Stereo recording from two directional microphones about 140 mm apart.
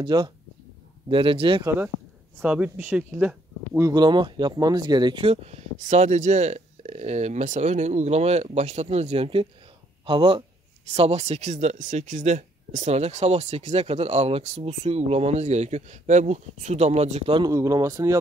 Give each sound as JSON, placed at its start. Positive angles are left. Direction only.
{"t": 0.0, "sound": "speech", "side_deg": -30}
{"t": 1.6, "sound": "speech", "side_deg": -20}
{"t": 3.9, "sound": "speech", "side_deg": -30}
{"t": 5.2, "sound": "speech", "side_deg": -50}
{"t": 10.9, "sound": "speech", "side_deg": -50}
{"t": 17.4, "sound": "speech", "side_deg": -25}